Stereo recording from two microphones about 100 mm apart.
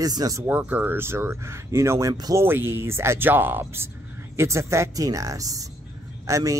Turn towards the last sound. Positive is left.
turn(degrees=-35)  # may be behind; listen again after turning